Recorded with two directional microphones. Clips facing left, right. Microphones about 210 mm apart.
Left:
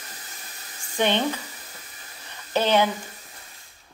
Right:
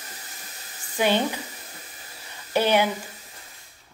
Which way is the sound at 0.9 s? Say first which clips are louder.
Even; 5° right (ahead or behind).